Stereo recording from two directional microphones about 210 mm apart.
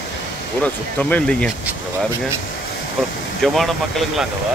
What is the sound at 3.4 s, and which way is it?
Speech, centre (ahead or behind).